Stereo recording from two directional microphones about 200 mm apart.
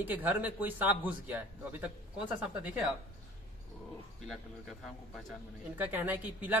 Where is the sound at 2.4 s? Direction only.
5° right (ahead or behind).